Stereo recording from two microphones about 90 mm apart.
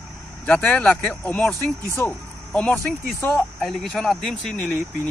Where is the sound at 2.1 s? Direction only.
15° left (ahead or behind).